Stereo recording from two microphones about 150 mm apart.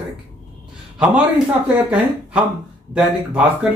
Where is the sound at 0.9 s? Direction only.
5° right (ahead or behind).